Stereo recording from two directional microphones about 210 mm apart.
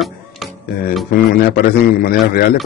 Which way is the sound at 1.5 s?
45° left (ahead or behind).